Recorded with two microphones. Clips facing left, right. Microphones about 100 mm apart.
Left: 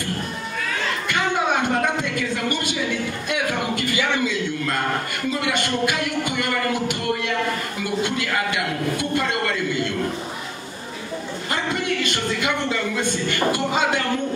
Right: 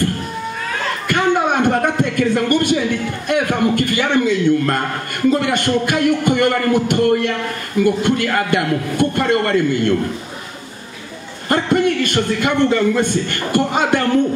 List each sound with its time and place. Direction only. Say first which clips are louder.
1.0 s a sound: right 7 dB; 50° right (ahead or behind)
3.3 s a man's voice: right 9 dB; 50° right (ahead or behind)
11.4 s a man's voice: right 10 dB; 50° right (ahead or behind)